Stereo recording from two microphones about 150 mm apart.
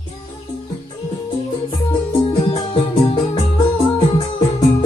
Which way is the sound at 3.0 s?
35° left (ahead or behind).